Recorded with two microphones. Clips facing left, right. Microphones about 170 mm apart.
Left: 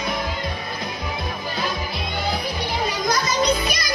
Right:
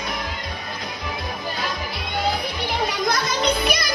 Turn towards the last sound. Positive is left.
turn(degrees=-60)  # may be behind; listen again after turning